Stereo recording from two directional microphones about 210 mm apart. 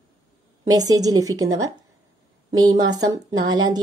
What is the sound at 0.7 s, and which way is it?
A woman's voice, 15° right (ahead or behind).